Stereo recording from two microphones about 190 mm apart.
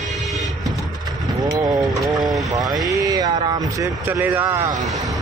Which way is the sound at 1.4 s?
20° right (ahead or behind).